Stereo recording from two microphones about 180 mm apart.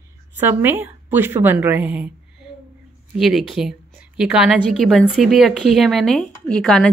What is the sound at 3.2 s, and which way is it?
A woman's voice, centre (ahead or behind).